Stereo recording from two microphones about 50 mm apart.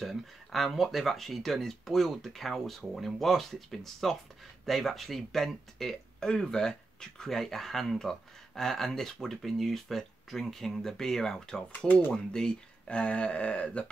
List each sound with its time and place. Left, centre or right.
0.0 s speech: centre; by 13.8 s left